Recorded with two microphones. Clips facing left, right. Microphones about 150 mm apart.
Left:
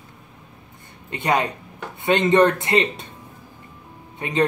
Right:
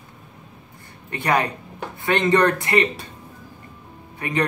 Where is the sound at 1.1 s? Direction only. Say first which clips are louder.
Even; 20° left (ahead or behind).